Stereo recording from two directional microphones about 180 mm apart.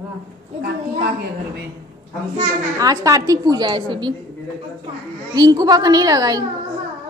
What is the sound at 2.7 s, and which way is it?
A woman's voice, 20° right (ahead or behind).